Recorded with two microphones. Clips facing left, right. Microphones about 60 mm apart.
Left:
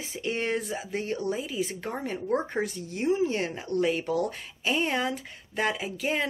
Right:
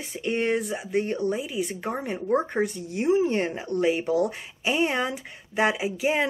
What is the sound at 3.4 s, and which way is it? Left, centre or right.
Speech, centre.